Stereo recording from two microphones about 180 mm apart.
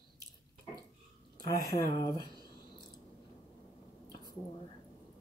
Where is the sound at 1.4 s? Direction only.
20° left (ahead or behind).